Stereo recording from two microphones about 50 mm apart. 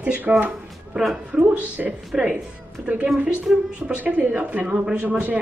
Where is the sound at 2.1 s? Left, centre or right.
Centre.